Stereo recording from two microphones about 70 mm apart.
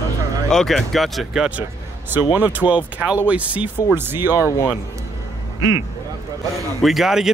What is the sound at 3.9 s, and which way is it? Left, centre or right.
Speech, right.